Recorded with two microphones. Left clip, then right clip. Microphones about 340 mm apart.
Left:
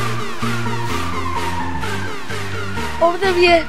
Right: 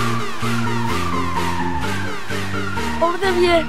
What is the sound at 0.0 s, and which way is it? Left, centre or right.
Music, centre.